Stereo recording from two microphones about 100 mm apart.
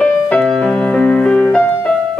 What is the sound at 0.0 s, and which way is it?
Music, 10° left (ahead or behind).